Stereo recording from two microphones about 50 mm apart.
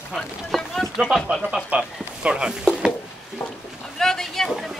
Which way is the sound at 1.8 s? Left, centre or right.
Centre.